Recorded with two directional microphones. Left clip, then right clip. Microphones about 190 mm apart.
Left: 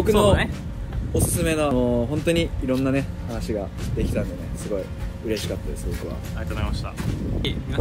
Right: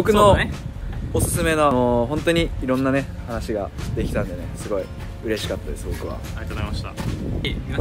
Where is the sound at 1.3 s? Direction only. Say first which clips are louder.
Right 5 dB; 25° right (ahead or behind).